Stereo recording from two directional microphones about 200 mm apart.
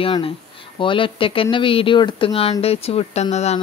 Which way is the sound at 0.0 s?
25° left (ahead or behind).